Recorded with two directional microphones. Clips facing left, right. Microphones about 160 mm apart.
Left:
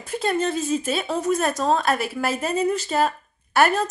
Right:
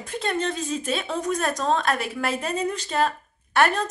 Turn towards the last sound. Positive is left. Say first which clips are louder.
# left 2 dB
turn(degrees=5)  # may be behind; listen again after turning